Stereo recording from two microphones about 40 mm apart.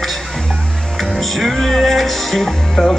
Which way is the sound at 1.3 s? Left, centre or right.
Centre.